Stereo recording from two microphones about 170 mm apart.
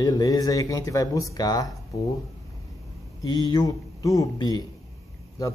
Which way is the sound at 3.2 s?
20° left (ahead or behind).